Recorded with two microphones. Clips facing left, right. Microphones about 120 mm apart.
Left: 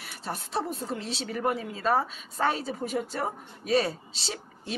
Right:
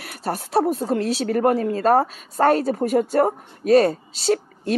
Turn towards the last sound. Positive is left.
turn(degrees=-60)  # may be behind; listen again after turning